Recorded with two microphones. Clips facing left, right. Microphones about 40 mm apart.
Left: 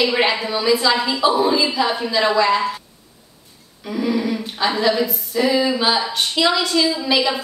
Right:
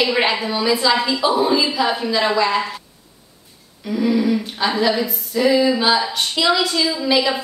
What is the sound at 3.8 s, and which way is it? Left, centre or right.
A woman's voice, centre.